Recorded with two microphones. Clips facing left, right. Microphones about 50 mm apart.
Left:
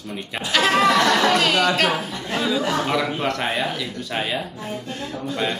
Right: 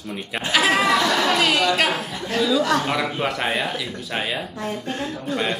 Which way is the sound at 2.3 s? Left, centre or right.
Left.